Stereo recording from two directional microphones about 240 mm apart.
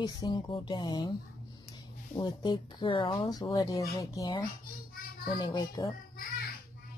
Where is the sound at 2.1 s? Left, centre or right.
Centre.